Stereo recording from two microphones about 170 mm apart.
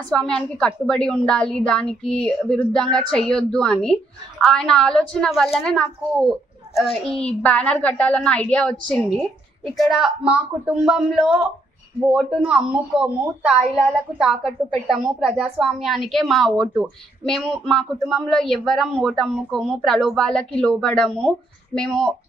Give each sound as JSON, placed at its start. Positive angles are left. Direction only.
{"t": 0.1, "sound": "a woman's voice", "side_deg": 5}